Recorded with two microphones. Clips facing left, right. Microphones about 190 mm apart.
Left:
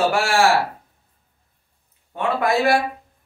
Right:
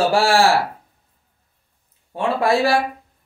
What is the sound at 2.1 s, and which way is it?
Speech, 30° right (ahead or behind).